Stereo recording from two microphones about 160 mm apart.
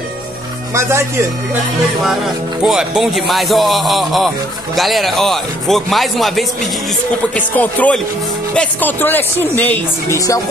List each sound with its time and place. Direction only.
0.7 s speech: 15° right (ahead or behind)
2.6 s speech: 5° right (ahead or behind); by 10.4 s 20° left (ahead or behind)